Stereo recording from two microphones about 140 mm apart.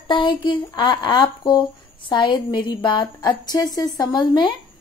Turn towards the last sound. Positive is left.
turn(degrees=30)  # may be behind; listen again after turning